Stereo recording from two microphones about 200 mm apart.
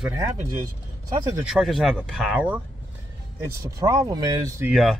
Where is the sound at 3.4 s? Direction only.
15° right (ahead or behind).